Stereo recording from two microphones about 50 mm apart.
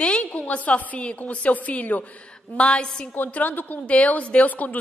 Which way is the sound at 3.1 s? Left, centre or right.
Left.